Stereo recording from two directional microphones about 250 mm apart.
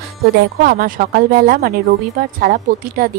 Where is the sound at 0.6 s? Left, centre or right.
Right.